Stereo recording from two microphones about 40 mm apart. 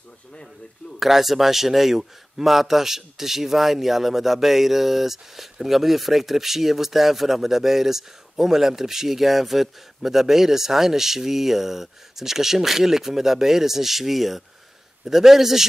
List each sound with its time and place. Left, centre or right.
0.3 s speech: left
0.9 s a man's voice: centre